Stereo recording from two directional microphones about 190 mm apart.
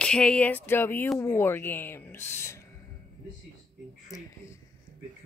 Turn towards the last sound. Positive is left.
turn(degrees=20)  # may be behind; listen again after turning